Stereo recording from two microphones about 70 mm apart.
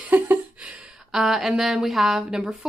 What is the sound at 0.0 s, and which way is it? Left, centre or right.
Speech, right.